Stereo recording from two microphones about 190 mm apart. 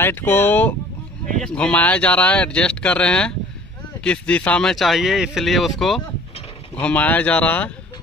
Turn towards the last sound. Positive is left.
turn(degrees=10)  # may be behind; listen again after turning